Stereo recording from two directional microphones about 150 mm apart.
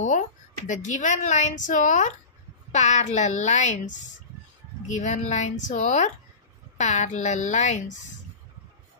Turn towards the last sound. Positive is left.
turn(degrees=50)  # may be behind; listen again after turning